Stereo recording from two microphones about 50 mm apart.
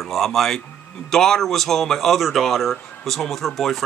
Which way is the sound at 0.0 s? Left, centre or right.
Centre.